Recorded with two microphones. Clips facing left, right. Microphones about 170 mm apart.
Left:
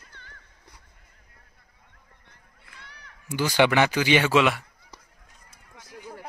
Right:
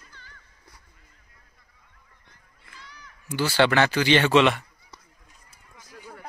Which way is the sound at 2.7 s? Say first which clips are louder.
Right 2 dB; 60° left (ahead or behind).